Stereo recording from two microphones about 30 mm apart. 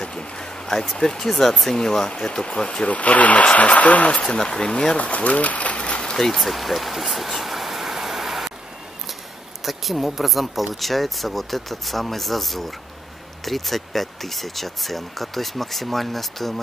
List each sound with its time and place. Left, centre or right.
0.0 s a sound: left
0.9 s speech: centre
2.9 s speech: left
4.4 s speech: left
4.9 s speech: left
5.8 s a sound: left
6.1 s speech: centre
6.4 s vehicle: centre
9.7 s speech: centre